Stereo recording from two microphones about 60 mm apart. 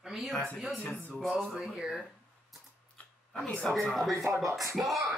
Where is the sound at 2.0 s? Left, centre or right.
Centre.